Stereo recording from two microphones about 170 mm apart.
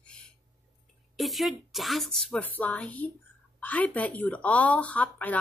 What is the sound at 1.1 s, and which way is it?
Speech, centre (ahead or behind).